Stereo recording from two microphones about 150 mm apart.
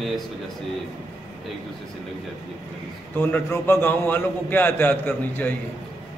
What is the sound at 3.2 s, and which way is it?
A man's voice, 15° left (ahead or behind).